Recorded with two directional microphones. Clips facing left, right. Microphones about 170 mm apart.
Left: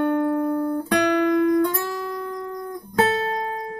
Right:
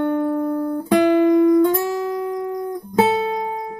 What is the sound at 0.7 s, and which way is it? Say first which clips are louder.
Guitar: right 5 dB; 15° right (ahead or behind).